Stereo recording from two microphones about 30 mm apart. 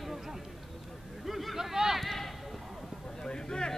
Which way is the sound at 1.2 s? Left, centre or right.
Centre.